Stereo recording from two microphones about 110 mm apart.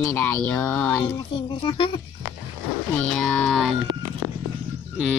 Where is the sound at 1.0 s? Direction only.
50° left (ahead or behind).